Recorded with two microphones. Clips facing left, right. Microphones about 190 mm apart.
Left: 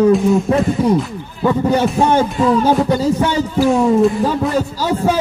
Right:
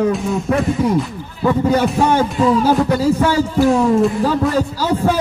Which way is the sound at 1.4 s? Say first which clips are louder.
Even; 20° left (ahead or behind).